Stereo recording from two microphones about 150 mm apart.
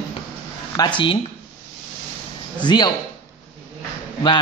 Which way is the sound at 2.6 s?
30° left (ahead or behind).